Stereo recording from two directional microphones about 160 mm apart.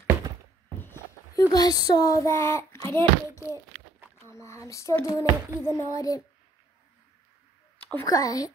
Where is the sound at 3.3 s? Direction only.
20° right (ahead or behind).